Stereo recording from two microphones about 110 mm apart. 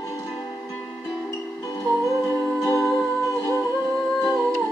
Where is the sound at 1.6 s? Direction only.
30° left (ahead or behind).